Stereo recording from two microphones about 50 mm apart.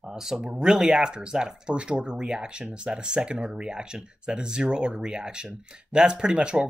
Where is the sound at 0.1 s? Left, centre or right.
Centre.